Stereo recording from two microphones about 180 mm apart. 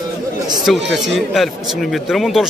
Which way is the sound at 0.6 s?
Centre (ahead or behind).